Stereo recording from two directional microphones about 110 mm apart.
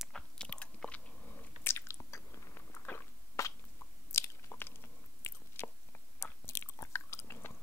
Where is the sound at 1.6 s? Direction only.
25° left (ahead or behind).